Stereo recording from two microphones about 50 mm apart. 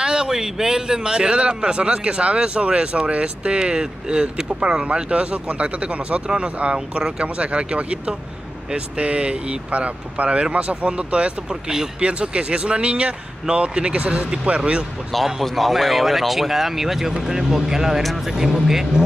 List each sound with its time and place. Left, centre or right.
0.0 s a man's voice: centre
15.1 s speech: centre